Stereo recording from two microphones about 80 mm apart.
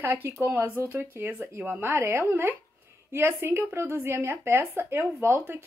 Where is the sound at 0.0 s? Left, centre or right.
Right.